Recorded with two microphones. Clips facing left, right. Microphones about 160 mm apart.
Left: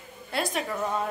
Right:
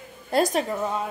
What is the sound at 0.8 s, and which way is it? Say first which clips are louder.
Speech: right 1 dB; 10° right (ahead or behind).